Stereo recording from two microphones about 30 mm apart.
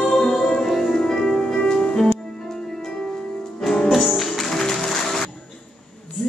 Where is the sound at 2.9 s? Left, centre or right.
Left.